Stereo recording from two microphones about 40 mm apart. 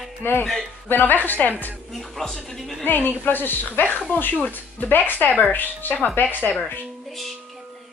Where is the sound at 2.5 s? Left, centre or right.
Centre.